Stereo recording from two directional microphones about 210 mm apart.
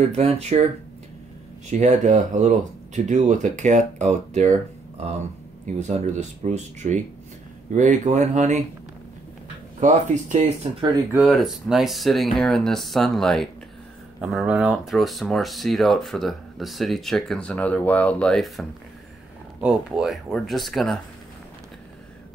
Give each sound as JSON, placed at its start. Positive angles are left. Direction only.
{"t": 0.1, "sound": "speech", "side_deg": -30}
{"t": 1.7, "sound": "speech", "side_deg": -35}
{"t": 5.8, "sound": "speech", "side_deg": -35}
{"t": 9.8, "sound": "speech", "side_deg": -35}
{"t": 10.9, "sound": "speech", "side_deg": -5}